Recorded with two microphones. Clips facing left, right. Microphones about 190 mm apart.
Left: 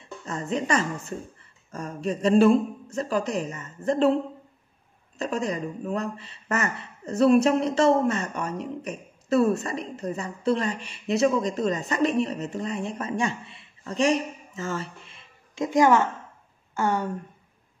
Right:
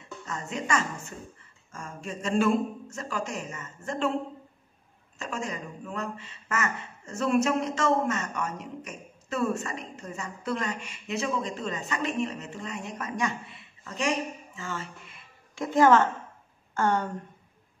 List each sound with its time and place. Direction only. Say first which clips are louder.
0.3 s a woman's voice: left 5 dB; 35° left (ahead or behind)
5.2 s a woman's voice: left 7 dB; 35° left (ahead or behind)
15.0 s a sound: even; 20° left (ahead or behind)
16.7 s speech: left 1 dB; 10° left (ahead or behind)